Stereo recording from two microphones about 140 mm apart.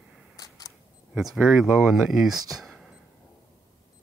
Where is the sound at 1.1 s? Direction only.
5° right (ahead or behind).